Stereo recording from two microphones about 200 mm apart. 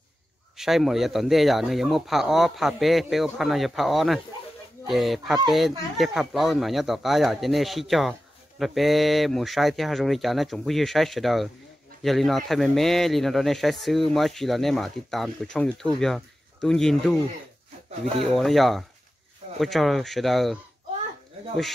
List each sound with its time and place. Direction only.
0.6 s speech: centre (ahead or behind)
18.2 s speech: centre (ahead or behind)